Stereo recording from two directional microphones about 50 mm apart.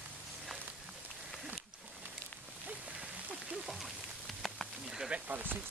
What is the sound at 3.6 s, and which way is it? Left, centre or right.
Rain, centre.